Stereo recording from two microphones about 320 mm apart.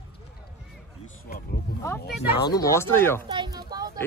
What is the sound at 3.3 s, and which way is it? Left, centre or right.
Speech, centre.